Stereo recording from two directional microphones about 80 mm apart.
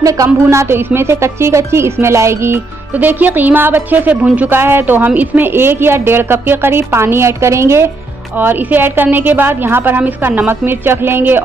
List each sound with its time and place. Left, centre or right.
0.0 s speech: right
3.0 s a woman's voice: right